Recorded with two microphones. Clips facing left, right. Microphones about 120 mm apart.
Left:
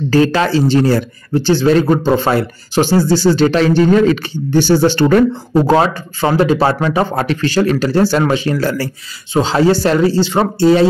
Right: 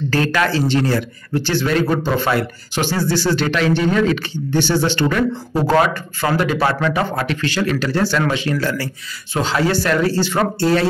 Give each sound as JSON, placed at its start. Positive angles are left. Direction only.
{"t": 0.1, "sound": "speech", "side_deg": 30}
{"t": 5.7, "sound": "speech", "side_deg": 25}